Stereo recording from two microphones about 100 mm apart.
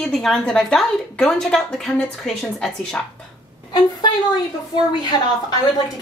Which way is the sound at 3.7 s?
45° left (ahead or behind).